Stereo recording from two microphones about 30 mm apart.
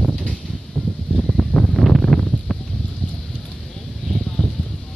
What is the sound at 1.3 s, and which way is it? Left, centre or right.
Wind noise, left.